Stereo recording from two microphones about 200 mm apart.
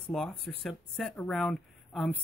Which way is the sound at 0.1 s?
Centre (ahead or behind).